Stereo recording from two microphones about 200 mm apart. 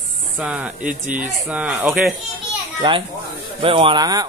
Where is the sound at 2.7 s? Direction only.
25° right (ahead or behind).